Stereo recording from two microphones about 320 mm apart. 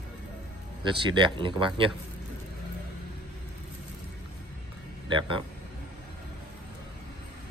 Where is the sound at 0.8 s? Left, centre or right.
Centre.